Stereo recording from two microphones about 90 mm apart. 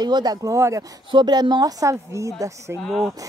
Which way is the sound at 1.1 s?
55° right (ahead or behind).